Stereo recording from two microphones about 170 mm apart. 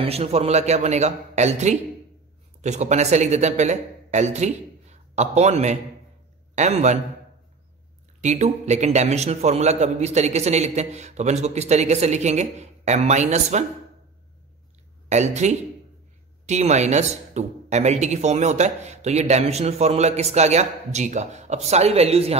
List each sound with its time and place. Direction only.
0.0 s a man's voice: 35° right (ahead or behind)
8.2 s a man's voice: 40° right (ahead or behind)
15.0 s a man's voice: 40° right (ahead or behind)